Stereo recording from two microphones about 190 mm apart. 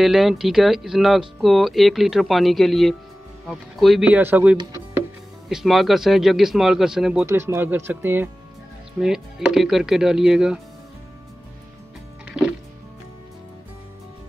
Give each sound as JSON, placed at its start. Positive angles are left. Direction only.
{"t": 0.0, "sound": "speech", "side_deg": 0}
{"t": 4.6, "sound": "music", "side_deg": -20}
{"t": 5.5, "sound": "speech", "side_deg": 0}
{"t": 12.3, "sound": "music", "side_deg": -5}